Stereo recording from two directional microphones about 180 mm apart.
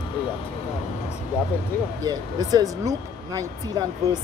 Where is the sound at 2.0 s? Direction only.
20° right (ahead or behind).